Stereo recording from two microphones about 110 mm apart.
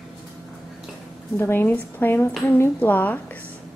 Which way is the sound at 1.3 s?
20° left (ahead or behind).